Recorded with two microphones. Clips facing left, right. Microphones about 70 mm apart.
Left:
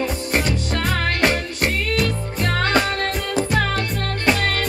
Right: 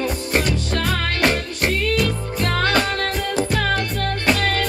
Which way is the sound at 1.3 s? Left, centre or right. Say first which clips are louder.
Even; centre.